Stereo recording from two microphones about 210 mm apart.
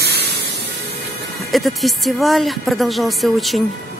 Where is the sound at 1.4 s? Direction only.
Centre (ahead or behind).